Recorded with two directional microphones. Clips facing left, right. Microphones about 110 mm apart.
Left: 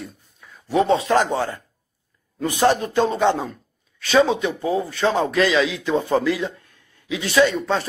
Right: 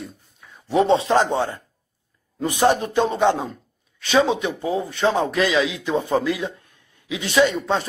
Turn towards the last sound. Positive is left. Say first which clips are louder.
# left 1 dB
turn(degrees=-20)  # may be behind; listen again after turning